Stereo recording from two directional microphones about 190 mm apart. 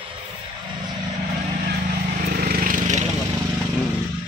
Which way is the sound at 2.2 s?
50° right (ahead or behind).